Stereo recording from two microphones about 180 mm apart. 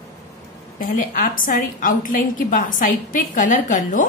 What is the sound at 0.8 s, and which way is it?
A woman's voice, 50° left (ahead or behind).